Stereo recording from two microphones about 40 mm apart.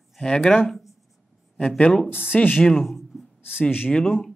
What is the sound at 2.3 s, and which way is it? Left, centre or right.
Speech, left.